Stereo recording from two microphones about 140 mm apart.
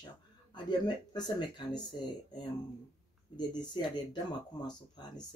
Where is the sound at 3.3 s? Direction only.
30° left (ahead or behind).